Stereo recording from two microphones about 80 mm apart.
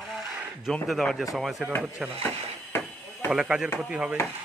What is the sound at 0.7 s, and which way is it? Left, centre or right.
Speech, centre.